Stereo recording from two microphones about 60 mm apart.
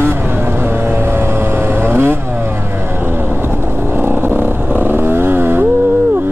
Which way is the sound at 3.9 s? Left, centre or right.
Right.